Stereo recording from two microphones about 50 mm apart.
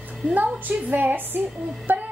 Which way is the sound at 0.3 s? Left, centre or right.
Right.